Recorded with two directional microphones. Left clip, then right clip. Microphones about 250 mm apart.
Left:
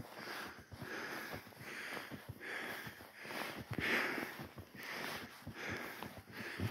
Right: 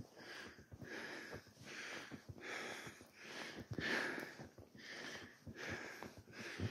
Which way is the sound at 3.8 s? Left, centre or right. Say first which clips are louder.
Left 4 dB; centre.